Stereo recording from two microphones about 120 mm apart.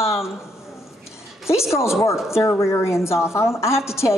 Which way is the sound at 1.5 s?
25° left (ahead or behind).